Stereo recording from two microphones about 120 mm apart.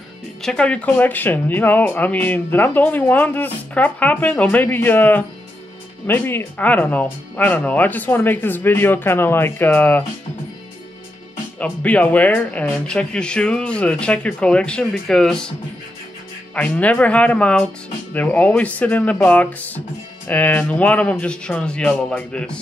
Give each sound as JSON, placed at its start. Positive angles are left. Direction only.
{"t": 0.4, "sound": "speech", "side_deg": 10}
{"t": 11.6, "sound": "speech", "side_deg": 15}
{"t": 16.5, "sound": "speech", "side_deg": 10}